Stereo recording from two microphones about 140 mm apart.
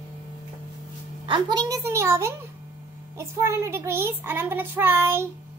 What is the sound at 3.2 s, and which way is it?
Child singing, 20° right (ahead or behind).